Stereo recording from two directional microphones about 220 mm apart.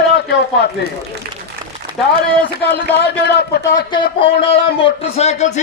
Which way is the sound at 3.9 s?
25° left (ahead or behind).